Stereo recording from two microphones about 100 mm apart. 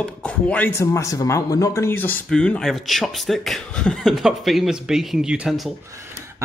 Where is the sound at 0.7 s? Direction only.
30° left (ahead or behind).